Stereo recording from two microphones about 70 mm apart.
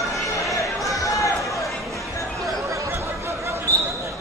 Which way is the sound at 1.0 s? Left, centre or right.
Left.